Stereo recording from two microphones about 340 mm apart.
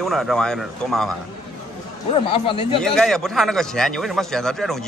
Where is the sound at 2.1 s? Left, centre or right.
Centre.